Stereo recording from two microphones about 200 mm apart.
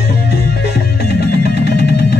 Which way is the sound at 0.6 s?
55° left (ahead or behind).